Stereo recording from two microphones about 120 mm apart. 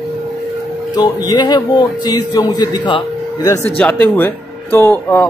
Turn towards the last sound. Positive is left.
turn(degrees=15)  # may be behind; listen again after turning